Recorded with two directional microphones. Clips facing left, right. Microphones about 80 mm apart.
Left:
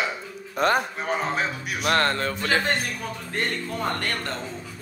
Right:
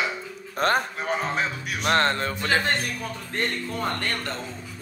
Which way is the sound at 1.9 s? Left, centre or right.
Right.